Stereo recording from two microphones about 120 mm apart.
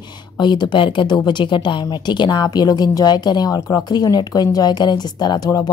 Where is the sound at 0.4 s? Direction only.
40° left (ahead or behind).